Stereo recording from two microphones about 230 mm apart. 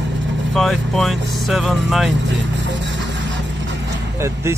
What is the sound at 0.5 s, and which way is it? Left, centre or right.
Speech, centre.